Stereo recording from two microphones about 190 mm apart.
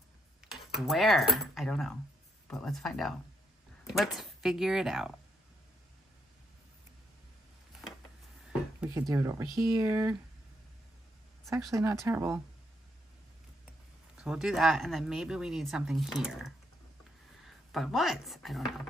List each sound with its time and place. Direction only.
0.5 s speech: centre (ahead or behind)
9.1 s speech: 15° right (ahead or behind)
11.4 s speech: 15° right (ahead or behind)
14.1 s speech: 5° right (ahead or behind)